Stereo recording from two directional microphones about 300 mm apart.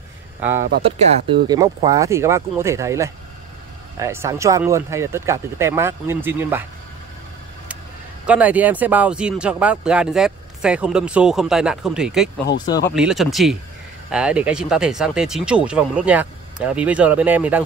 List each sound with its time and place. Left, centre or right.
0.6 s speech: right
0.8 s speech: centre
8.3 s speech: centre
12.6 s speech: centre
12.9 s speech: centre